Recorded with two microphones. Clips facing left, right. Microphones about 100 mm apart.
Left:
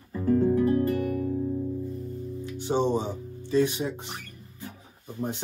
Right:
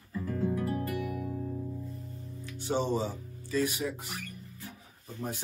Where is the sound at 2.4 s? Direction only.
20° left (ahead or behind).